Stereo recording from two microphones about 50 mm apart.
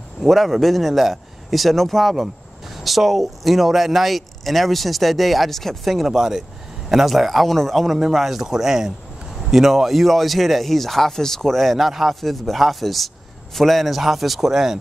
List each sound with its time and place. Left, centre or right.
0.2 s speech: centre